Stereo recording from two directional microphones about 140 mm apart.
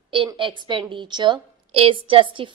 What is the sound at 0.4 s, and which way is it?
A woman's voice, 35° right (ahead or behind).